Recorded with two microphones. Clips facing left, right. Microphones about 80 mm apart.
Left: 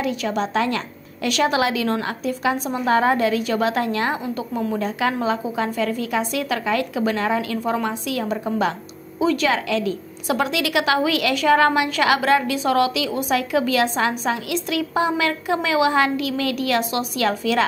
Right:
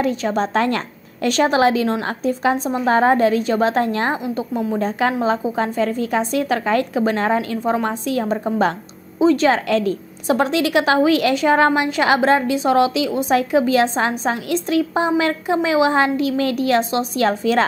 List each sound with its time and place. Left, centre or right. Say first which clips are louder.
0.0 s a woman's voice: right 4 dB; right